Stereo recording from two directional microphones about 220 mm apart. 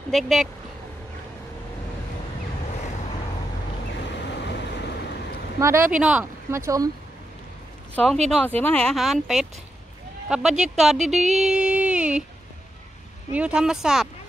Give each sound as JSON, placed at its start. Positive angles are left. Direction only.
{"t": 0.1, "sound": "speech", "side_deg": 0}
{"t": 4.0, "sound": "boat", "side_deg": 50}
{"t": 5.6, "sound": "speech", "side_deg": -10}
{"t": 7.9, "sound": "speech", "side_deg": 5}
{"t": 11.3, "sound": "a sound", "side_deg": -5}
{"t": 13.3, "sound": "speech", "side_deg": -5}